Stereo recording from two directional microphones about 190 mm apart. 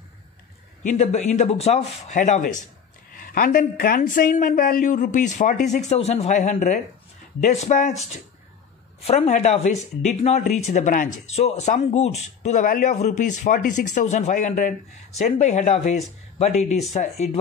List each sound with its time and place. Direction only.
0.8 s speech: 40° left (ahead or behind)
3.1 s speech: 50° left (ahead or behind); by 17.4 s 35° left (ahead or behind)